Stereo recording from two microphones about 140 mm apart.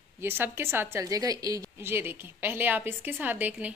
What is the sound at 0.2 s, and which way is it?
A woman's voice, 15° right (ahead or behind).